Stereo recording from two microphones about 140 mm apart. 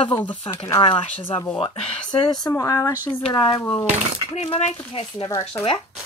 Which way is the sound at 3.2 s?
40° left (ahead or behind).